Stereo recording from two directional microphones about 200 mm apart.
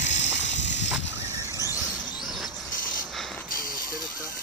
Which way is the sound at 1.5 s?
15° left (ahead or behind).